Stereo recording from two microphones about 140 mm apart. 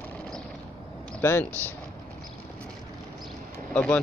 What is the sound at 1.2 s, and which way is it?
Speech, 20° left (ahead or behind).